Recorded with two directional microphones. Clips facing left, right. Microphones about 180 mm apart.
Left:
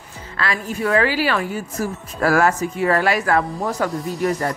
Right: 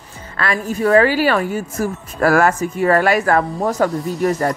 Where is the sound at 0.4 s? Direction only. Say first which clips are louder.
Right 4 dB; 45° right (ahead or behind).